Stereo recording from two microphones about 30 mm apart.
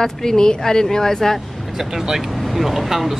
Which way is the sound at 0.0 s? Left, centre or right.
Centre.